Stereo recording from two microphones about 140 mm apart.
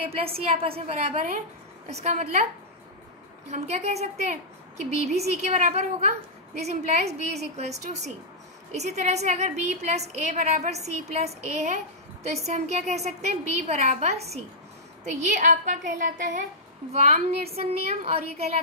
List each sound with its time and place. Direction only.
0.1 s a woman's voice: 45° right (ahead or behind)
3.4 s a woman's voice: 55° right (ahead or behind)
15.3 s a woman's voice: 70° right (ahead or behind)
16.9 s a woman's voice: 50° right (ahead or behind)